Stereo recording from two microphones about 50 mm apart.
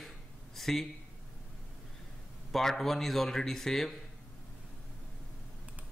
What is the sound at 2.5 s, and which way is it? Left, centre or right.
Speech, centre.